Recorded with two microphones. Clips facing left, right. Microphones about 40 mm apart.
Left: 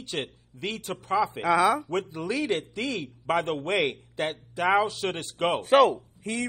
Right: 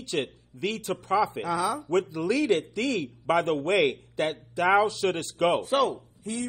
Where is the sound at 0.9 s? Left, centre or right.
Left.